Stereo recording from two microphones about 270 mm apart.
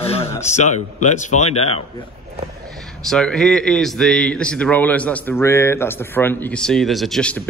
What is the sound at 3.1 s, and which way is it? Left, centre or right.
Speech, centre.